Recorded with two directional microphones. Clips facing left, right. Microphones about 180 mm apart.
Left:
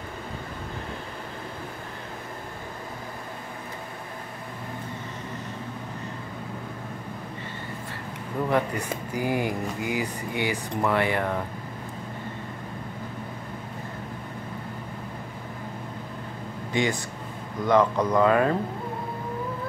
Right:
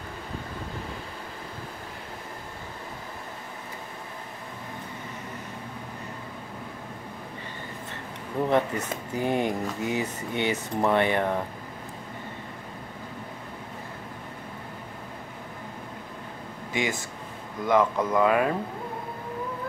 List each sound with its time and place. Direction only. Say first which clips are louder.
8.5 s speech: right 1 dB; 20° right (ahead or behind)
17.6 s speech: left 2 dB; 5° right (ahead or behind)